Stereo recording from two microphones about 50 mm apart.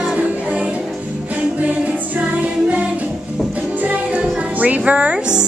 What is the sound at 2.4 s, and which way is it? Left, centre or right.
Music, right.